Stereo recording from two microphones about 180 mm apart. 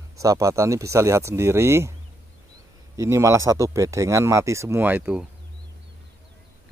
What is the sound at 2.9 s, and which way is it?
Speech, 15° right (ahead or behind).